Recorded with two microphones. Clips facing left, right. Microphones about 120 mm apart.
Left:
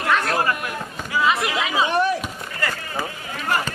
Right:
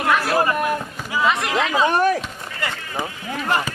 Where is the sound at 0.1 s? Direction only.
5° right (ahead or behind).